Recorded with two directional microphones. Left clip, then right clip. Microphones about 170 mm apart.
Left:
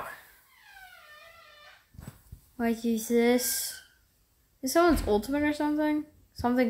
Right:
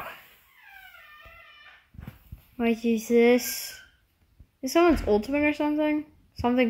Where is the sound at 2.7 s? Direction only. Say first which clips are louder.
Right 6 dB; 10° right (ahead or behind).